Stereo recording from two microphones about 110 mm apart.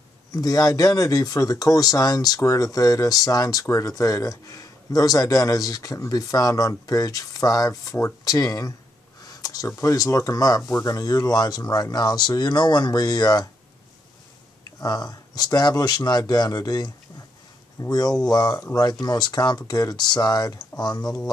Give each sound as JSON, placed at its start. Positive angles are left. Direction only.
{"t": 0.3, "sound": "speech", "side_deg": 35}
{"t": 14.8, "sound": "speech", "side_deg": 35}
{"t": 21.0, "sound": "speech", "side_deg": 5}